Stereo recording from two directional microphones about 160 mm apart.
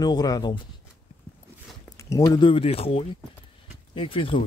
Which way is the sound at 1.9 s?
20° left (ahead or behind).